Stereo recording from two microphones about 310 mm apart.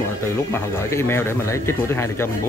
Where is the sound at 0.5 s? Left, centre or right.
Centre.